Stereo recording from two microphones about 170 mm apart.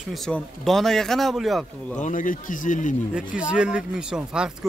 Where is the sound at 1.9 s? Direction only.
50° left (ahead or behind).